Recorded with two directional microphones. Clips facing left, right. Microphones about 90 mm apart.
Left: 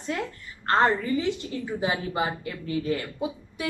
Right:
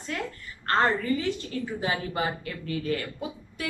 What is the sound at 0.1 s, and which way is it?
Speech, 20° left (ahead or behind).